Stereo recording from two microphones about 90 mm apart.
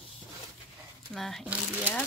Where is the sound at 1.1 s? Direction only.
5° left (ahead or behind).